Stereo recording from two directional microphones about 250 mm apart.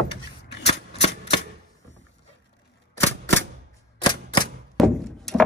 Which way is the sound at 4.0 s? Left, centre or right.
Centre.